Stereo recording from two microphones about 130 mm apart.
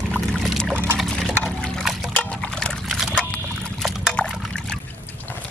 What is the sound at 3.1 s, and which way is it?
Dog, 10° left (ahead or behind).